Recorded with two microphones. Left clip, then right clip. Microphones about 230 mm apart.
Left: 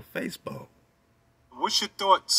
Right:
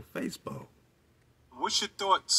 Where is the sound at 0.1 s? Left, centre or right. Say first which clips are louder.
Left 4 dB; centre.